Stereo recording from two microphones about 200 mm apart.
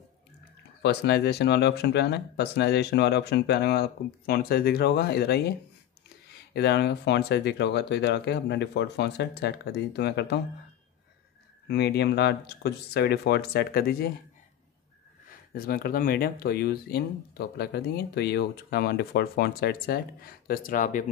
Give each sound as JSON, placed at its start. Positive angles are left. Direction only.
{"t": 0.8, "sound": "speech", "side_deg": 55}
{"t": 6.5, "sound": "speech", "side_deg": 55}
{"t": 11.6, "sound": "speech", "side_deg": 55}
{"t": 15.5, "sound": "speech", "side_deg": 50}